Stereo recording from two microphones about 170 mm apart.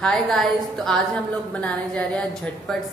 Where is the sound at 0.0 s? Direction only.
5° left (ahead or behind).